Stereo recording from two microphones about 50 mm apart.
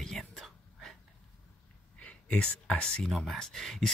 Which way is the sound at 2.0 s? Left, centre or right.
Left.